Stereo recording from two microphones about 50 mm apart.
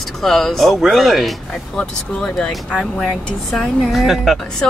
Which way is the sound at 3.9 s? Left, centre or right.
Centre.